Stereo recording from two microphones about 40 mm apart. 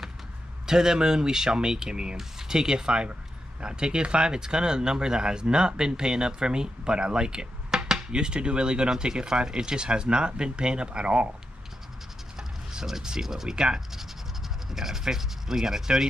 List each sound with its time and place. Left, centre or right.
0.7 s speech: centre
12.4 s speech: centre